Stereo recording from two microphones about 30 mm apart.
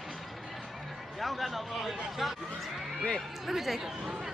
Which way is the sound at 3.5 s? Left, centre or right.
Centre.